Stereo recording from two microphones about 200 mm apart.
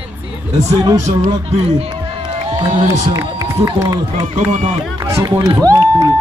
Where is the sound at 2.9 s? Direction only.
15° right (ahead or behind).